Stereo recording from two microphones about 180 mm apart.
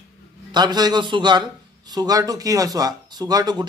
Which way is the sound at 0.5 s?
25° right (ahead or behind).